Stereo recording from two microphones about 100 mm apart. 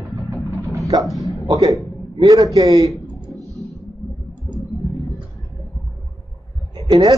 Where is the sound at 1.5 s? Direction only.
35° right (ahead or behind).